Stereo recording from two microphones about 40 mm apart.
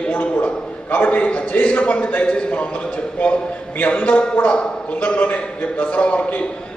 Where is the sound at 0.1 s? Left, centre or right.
Left.